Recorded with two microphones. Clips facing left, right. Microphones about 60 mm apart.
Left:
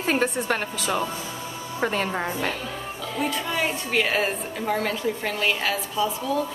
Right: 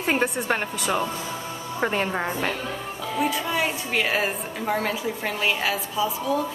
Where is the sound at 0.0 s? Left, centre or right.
Centre.